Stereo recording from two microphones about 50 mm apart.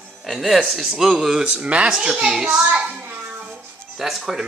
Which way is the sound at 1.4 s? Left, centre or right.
Right.